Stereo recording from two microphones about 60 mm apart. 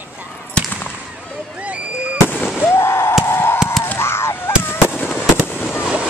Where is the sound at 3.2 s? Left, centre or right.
Left.